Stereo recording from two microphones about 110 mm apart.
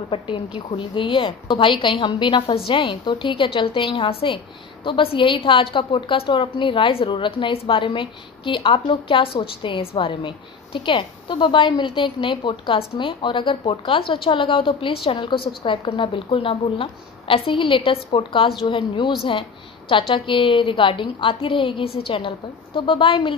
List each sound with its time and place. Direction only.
0.6 s a woman's voice: 50° left (ahead or behind)